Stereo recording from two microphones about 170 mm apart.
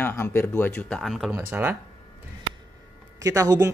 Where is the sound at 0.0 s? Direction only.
15° left (ahead or behind).